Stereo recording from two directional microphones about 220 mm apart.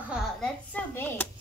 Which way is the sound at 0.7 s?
10° left (ahead or behind).